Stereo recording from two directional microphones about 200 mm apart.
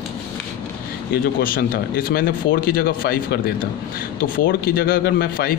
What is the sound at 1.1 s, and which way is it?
Speech, 50° left (ahead or behind).